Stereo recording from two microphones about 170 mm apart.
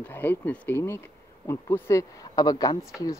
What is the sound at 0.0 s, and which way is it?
Speech, 10° left (ahead or behind).